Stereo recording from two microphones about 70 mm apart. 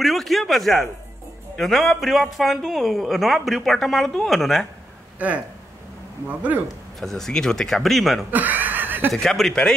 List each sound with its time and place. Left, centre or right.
0.0 s a sound: centre
1.6 s a woman's voice: centre
6.2 s speech: right
7.0 s a woman's voice: centre
8.3 s chuckle: right
9.1 s a woman's voice: centre